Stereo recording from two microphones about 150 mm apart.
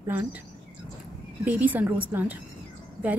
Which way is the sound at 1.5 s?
10° right (ahead or behind).